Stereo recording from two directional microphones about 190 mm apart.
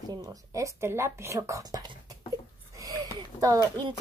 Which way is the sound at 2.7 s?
20° right (ahead or behind).